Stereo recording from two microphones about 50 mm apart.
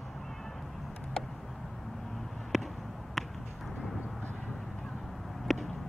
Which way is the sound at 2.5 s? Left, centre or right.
Centre.